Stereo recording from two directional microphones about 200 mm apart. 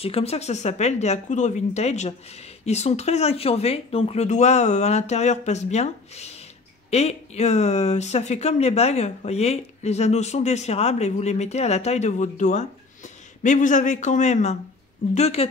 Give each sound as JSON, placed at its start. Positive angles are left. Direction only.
{"t": 0.0, "sound": "speech", "side_deg": 30}